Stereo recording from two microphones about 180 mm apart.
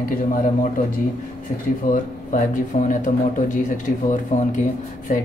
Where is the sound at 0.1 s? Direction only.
50° left (ahead or behind).